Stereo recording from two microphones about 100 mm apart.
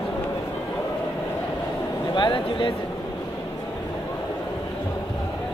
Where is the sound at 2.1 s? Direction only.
55° left (ahead or behind).